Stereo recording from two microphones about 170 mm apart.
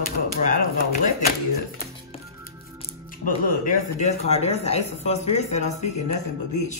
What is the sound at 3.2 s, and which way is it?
Speech, 50° left (ahead or behind).